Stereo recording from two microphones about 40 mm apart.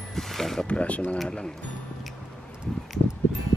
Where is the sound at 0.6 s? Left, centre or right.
Left.